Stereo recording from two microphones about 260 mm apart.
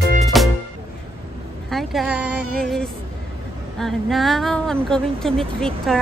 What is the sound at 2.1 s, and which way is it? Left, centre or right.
Music, right.